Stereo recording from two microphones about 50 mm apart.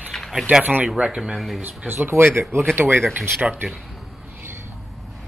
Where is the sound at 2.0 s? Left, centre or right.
Right.